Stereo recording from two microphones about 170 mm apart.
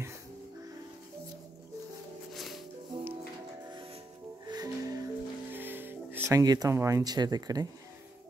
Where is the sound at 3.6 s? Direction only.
30° right (ahead or behind).